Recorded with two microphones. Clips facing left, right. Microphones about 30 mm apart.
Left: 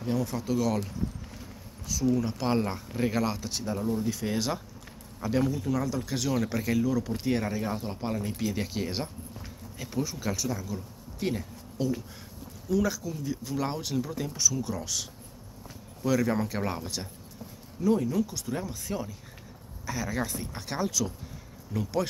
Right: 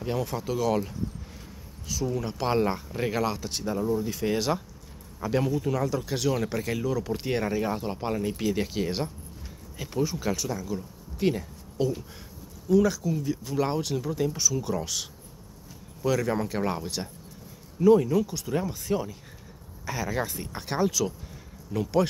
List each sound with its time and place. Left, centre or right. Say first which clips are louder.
0.0 s speech: even; right
0.4 s speech: right 3 dB; centre
2.0 s speech: left 2 dB; centre
3.7 s speech: right 3 dB; centre
4.1 s speech: right 3 dB; centre